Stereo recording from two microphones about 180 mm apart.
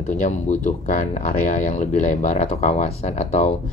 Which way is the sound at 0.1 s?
45° left (ahead or behind).